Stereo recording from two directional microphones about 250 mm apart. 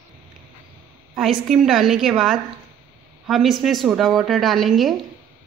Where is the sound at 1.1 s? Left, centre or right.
Centre.